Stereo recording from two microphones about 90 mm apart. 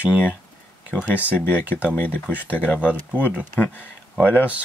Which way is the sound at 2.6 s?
15° right (ahead or behind).